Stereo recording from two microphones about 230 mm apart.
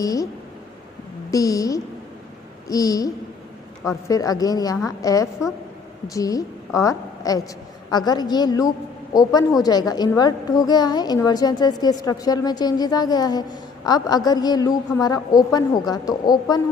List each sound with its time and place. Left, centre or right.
0.0 s a woman's voice: centre
1.3 s a woman's voice: centre